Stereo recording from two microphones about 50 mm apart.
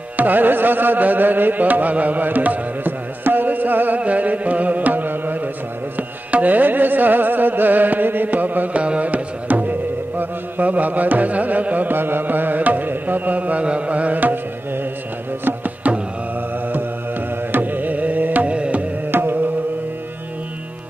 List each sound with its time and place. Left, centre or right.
0.2 s carnatic music: right
8.8 s music: right
12.0 s carnatic music: right
15.4 s tabla: right
17.5 s carnatic music: right
19.1 s music: right